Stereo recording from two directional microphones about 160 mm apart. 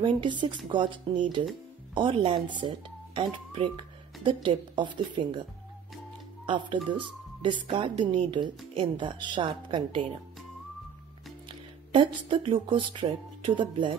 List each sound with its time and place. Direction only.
0.0 s speech: 30° right (ahead or behind)
6.4 s speech: 30° right (ahead or behind)
11.9 s speech: 30° right (ahead or behind)